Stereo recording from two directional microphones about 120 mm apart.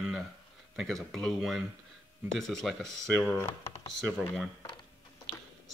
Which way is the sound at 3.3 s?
20° left (ahead or behind).